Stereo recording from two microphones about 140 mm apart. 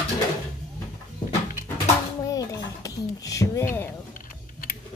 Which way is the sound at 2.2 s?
25° left (ahead or behind).